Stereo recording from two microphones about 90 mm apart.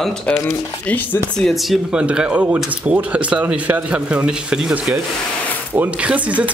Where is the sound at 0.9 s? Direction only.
20° left (ahead or behind).